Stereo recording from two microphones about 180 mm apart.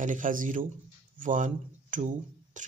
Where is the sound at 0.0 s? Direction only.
45° right (ahead or behind).